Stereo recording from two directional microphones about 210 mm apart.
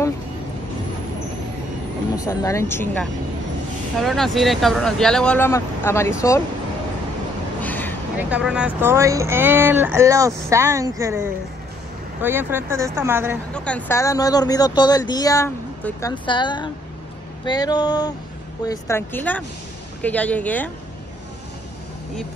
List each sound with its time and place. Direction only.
2.1 s speech: 15° left (ahead or behind)
7.6 s a sound: 10° left (ahead or behind)
8.2 s speech: 5° right (ahead or behind)
13.7 s speech: 10° left (ahead or behind)
17.5 s a sound: 20° left (ahead or behind)
18.7 s speech: 10° left (ahead or behind)